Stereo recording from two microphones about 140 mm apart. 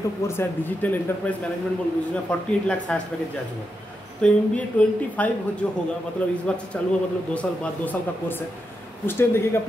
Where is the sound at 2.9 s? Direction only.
10° left (ahead or behind).